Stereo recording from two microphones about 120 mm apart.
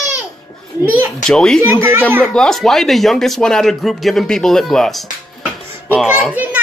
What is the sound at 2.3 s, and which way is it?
Speech, 5° left (ahead or behind).